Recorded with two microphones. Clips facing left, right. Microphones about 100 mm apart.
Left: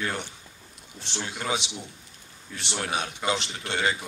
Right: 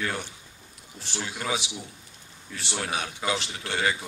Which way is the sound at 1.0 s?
20° left (ahead or behind).